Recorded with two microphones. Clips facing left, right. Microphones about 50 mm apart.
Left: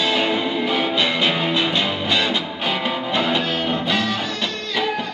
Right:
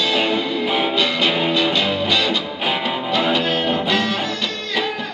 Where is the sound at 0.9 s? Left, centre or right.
Centre.